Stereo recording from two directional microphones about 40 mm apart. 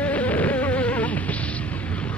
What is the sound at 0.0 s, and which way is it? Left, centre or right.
Insect, left.